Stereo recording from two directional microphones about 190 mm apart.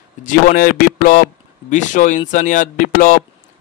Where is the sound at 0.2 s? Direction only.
45° left (ahead or behind).